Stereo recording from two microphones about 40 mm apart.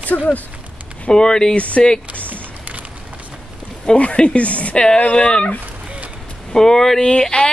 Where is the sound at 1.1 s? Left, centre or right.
Left.